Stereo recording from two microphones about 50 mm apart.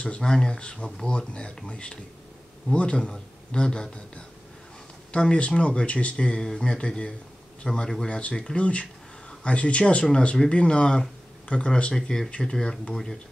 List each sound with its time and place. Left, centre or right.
0.2 s a man's voice: centre
8.1 s a man's voice: left
11.9 s a man's voice: centre
12.9 s speech: centre